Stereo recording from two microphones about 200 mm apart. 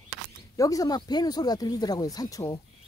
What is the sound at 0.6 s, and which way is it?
Speech, 15° left (ahead or behind).